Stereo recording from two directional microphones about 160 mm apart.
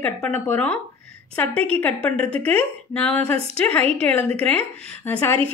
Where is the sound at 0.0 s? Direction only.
10° left (ahead or behind).